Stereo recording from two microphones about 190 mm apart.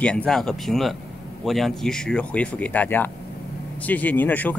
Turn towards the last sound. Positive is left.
turn(degrees=10)  # may be behind; listen again after turning